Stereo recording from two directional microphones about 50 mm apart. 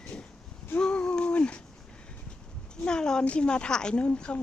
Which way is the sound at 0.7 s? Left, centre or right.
Centre.